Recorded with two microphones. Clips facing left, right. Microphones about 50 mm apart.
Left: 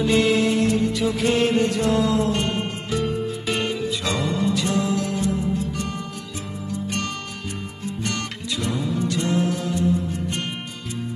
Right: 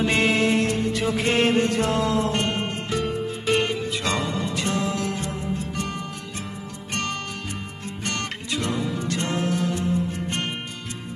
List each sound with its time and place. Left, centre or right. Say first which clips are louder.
0.0 s music: left 2 dB; right
3.8 s music: left 1 dB; right
8.0 s music: even; right